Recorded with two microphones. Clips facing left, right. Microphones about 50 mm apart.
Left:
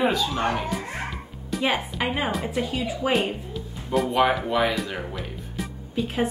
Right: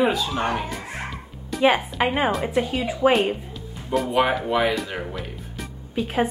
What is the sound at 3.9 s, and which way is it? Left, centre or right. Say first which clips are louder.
Speech: even; centre.